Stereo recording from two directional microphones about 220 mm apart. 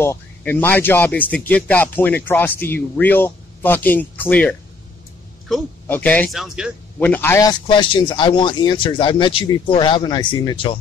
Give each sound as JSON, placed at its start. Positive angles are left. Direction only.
{"t": 0.0, "sound": "speech", "side_deg": 10}
{"t": 7.0, "sound": "speech", "side_deg": 10}
{"t": 7.6, "sound": "speech", "side_deg": 20}